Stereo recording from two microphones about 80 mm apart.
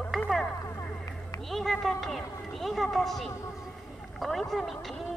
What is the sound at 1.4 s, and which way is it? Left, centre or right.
Speech, centre.